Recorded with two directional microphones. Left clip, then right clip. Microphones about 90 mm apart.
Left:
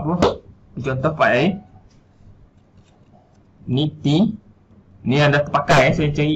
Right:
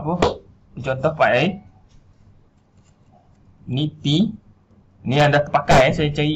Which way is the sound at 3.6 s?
20° right (ahead or behind).